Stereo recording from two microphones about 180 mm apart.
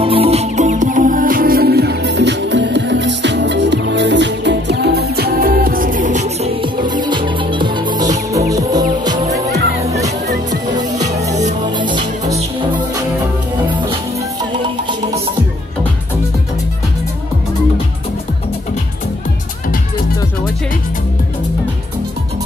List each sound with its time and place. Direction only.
0.0 s music: 35° right (ahead or behind)
6.9 s music: 25° right (ahead or behind)
10.5 s music: 20° right (ahead or behind)